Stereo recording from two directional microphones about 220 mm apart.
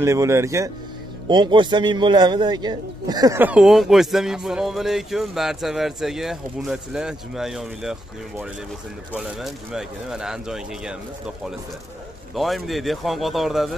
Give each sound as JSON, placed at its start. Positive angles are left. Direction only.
{"t": 0.0, "sound": "a man's voice", "side_deg": -15}
{"t": 12.4, "sound": "a man's voice", "side_deg": 0}